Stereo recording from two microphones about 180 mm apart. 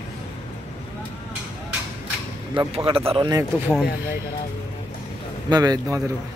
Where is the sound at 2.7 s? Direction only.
30° right (ahead or behind).